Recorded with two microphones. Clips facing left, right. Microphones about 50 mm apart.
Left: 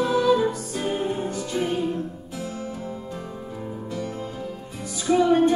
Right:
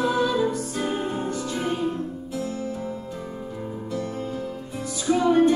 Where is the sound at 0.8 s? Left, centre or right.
Right.